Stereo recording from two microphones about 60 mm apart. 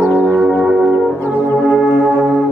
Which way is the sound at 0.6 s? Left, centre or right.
Centre.